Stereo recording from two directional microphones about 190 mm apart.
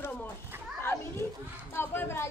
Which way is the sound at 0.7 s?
15° left (ahead or behind).